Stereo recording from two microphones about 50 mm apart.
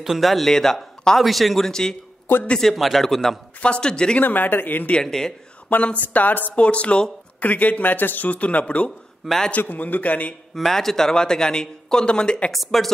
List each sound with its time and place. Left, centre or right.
0.0 s a man's voice: centre
1.7 s speech: centre
2.6 s a man's voice: centre
3.6 s speech: centre
4.2 s speech: left
5.0 s speech: centre
5.9 s speech: left
6.6 s speech: left
9.2 s a man's voice: centre
9.6 s speech: left
10.5 s speech: centre
12.5 s a man's voice: centre